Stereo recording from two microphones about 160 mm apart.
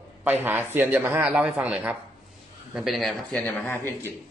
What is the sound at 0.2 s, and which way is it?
A man's voice, 10° right (ahead or behind).